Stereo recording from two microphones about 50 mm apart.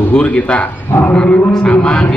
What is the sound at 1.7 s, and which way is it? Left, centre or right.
Speech, left.